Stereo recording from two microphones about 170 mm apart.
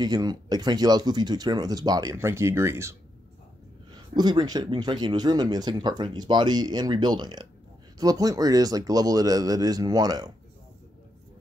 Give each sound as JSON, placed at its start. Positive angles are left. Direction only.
{"t": 0.0, "sound": "speech", "side_deg": -25}